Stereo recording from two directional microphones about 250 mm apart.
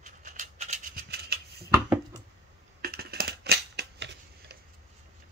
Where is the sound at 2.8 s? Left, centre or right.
Right.